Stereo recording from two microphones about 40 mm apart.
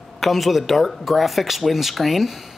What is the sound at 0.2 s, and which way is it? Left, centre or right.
Speech, centre.